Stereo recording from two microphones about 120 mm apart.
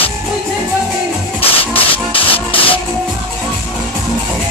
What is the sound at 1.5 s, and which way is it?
Music, 50° left (ahead or behind).